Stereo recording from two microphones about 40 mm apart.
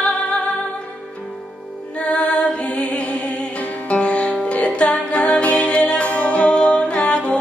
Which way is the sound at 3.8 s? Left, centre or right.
Left.